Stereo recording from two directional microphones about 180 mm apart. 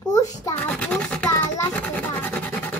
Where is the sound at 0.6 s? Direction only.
10° left (ahead or behind).